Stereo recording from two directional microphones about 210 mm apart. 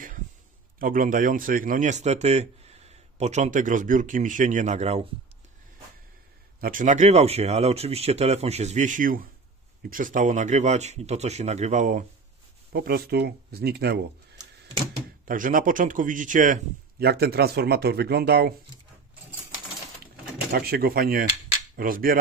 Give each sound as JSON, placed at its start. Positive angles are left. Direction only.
{"t": 0.7, "sound": "a man's voice", "side_deg": -40}
{"t": 6.6, "sound": "a man's voice", "side_deg": -40}
{"t": 12.7, "sound": "speech", "side_deg": -45}
{"t": 15.2, "sound": "a man's voice", "side_deg": -40}
{"t": 17.0, "sound": "speech", "side_deg": -50}
{"t": 20.5, "sound": "speech", "side_deg": -45}